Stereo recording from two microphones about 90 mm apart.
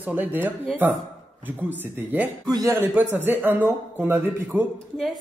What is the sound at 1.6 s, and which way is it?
Speech, 20° right (ahead or behind).